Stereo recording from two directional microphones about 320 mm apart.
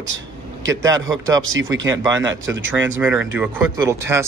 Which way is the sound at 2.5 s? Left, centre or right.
Right.